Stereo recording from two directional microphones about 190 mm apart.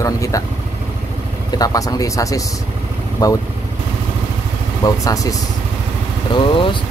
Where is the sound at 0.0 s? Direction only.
15° left (ahead or behind).